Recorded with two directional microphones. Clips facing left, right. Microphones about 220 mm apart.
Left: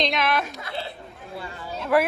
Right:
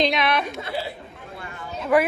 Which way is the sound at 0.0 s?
Centre (ahead or behind).